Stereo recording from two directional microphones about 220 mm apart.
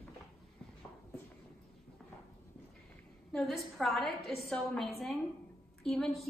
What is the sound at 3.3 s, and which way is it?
A woman's voice, centre (ahead or behind).